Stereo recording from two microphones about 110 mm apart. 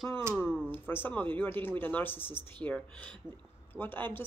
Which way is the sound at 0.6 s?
20° left (ahead or behind).